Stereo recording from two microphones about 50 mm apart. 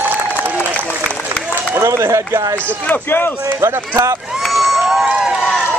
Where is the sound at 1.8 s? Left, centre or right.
Right.